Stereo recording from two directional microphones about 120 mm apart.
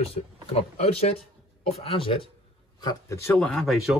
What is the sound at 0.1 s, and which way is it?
Speech, 55° left (ahead or behind).